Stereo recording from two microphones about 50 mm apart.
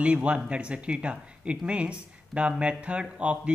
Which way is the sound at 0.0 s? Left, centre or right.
Right.